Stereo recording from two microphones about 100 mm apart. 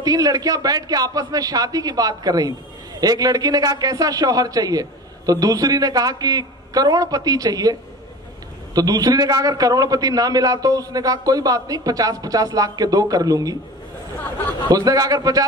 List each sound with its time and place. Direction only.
0.0 s a man's voice: 40° right (ahead or behind)
8.7 s a man's voice: 40° right (ahead or behind)
14.7 s a man's voice: 40° right (ahead or behind)